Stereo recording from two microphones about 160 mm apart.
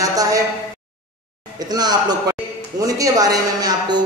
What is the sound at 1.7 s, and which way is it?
A man's voice, 25° right (ahead or behind).